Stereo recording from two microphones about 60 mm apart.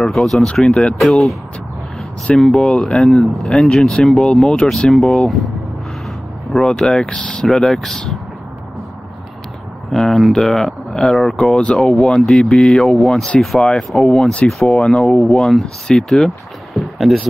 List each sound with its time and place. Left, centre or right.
0.0 s speech: centre
0.5 s speech: centre
0.9 s speech: centre
2.3 s speech: centre
3.1 s speech: centre
6.5 s speech: centre
9.9 s speech: centre